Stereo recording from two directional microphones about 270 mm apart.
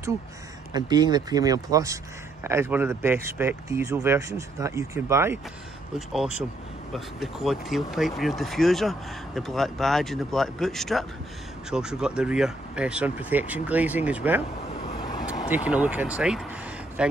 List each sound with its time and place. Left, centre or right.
0.7 s speech: centre
15.0 s vehicle: centre
15.5 s speech: centre